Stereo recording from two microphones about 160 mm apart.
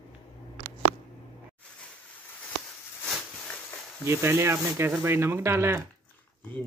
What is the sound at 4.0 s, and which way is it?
Speech, 15° right (ahead or behind).